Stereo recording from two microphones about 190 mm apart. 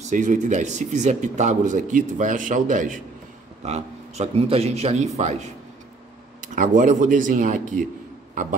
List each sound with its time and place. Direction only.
0.0 s speech: 40° right (ahead or behind)
6.4 s speech: 45° right (ahead or behind)